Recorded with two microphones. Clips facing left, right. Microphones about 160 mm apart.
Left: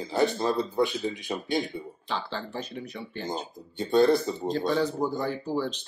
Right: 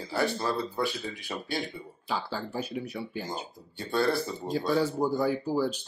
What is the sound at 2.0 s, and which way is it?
Speech, 10° right (ahead or behind).